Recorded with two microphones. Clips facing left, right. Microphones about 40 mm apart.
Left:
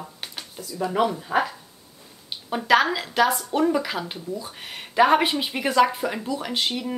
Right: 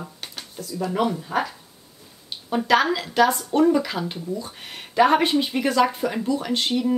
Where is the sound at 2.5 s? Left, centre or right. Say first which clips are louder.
Even; centre.